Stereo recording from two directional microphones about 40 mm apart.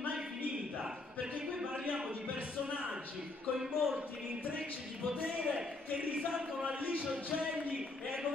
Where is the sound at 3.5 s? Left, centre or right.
Centre.